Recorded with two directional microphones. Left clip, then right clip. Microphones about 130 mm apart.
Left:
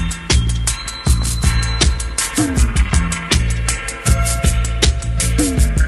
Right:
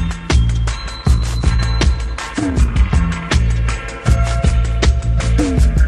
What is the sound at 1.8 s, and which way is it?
Music, 30° left (ahead or behind).